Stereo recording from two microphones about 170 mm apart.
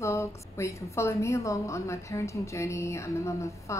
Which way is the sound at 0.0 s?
15° left (ahead or behind).